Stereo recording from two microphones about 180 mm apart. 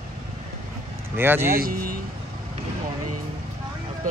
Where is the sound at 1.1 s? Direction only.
10° right (ahead or behind).